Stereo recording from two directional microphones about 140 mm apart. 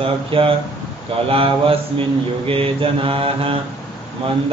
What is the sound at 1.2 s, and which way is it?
Mantra, 40° right (ahead or behind).